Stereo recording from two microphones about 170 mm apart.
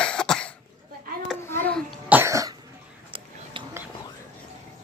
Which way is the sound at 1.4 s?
15° left (ahead or behind).